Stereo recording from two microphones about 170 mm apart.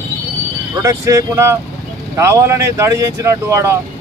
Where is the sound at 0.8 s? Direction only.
20° right (ahead or behind).